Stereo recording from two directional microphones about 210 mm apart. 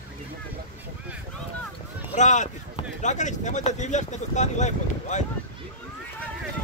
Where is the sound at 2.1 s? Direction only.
35° left (ahead or behind).